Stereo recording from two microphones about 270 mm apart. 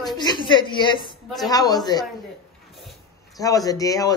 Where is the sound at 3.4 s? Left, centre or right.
Centre.